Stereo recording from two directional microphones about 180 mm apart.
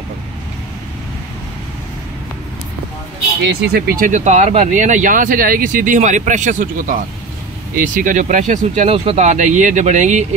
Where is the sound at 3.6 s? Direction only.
60° right (ahead or behind).